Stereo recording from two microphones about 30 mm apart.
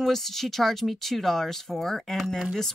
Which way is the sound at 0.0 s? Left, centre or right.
Centre.